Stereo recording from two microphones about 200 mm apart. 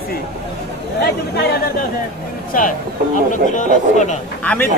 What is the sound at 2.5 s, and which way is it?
A man's voice, 45° left (ahead or behind).